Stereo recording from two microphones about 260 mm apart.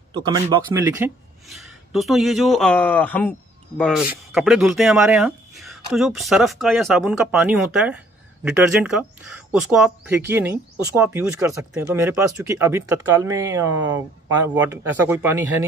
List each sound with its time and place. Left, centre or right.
0.2 s speech: centre